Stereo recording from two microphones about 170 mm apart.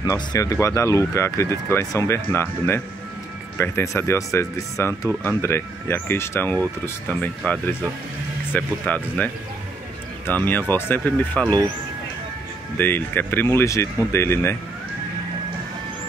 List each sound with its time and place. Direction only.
0.0 s speech: 20° left (ahead or behind)
8.5 s speech: 10° left (ahead or behind)
12.7 s speech: 10° left (ahead or behind)